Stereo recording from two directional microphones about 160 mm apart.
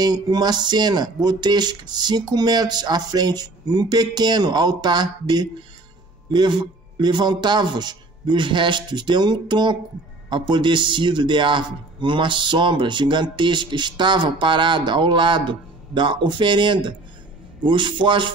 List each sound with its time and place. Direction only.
0.0 s a man's voice: 25° right (ahead or behind)